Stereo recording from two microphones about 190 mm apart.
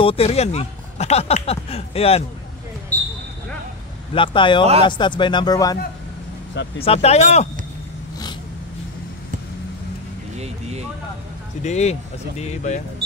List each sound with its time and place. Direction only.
0.0 s speech: 30° left (ahead or behind)
4.1 s speech: 25° left (ahead or behind)
6.8 s speech: 30° left (ahead or behind)
11.6 s speech: 35° left (ahead or behind)